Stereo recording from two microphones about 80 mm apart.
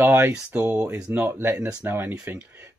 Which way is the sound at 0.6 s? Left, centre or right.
Right.